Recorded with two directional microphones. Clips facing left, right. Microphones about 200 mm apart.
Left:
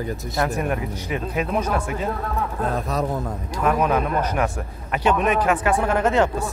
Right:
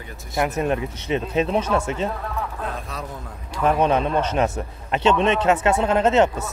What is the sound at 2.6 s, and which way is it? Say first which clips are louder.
Speech: left 7 dB; 40° left (ahead or behind).